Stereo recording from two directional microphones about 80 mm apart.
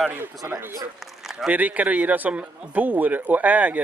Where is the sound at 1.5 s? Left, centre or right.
Centre.